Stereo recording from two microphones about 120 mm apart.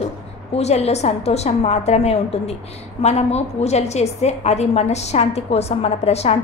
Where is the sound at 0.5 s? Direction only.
65° left (ahead or behind).